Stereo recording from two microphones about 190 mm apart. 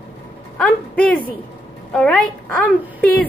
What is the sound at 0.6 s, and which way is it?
A woman's voice, 5° left (ahead or behind).